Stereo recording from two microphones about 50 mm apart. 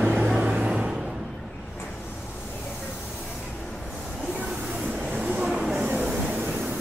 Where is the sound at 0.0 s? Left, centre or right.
Right.